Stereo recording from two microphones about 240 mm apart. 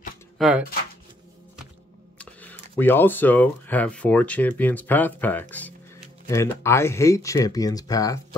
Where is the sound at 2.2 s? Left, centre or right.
Centre.